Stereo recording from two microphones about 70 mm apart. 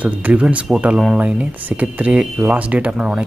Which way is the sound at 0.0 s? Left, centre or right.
Centre.